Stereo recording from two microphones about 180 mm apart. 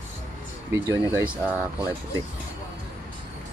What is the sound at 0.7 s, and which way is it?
Speech, 15° right (ahead or behind).